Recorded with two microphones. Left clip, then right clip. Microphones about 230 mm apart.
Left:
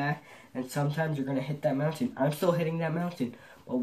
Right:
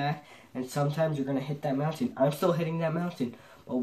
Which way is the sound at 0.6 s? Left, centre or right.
Centre.